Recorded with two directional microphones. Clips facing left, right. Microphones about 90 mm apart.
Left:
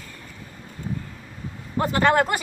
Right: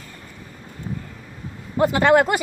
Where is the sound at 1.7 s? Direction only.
10° right (ahead or behind).